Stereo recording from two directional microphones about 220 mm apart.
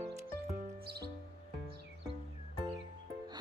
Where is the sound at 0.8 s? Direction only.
45° right (ahead or behind).